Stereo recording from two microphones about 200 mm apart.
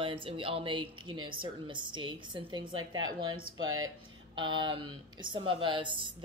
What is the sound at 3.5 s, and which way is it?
Speech, 90° right.